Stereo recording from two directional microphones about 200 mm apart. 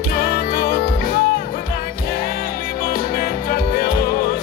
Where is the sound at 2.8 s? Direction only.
50° left (ahead or behind).